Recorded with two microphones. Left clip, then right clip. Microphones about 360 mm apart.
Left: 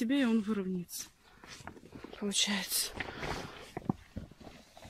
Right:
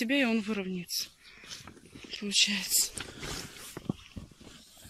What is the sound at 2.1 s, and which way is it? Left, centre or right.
Speech, left.